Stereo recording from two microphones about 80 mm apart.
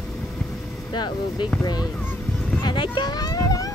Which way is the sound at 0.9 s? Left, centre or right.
Left.